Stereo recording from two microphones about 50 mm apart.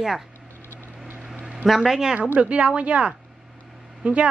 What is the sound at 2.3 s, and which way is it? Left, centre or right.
Speech, right.